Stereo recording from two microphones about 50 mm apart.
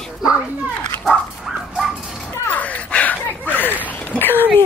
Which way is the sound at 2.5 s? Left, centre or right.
Left.